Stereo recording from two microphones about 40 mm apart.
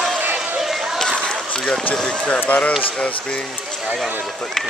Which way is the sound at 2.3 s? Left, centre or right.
Left.